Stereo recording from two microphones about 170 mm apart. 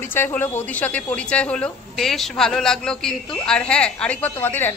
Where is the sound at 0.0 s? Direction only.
10° left (ahead or behind).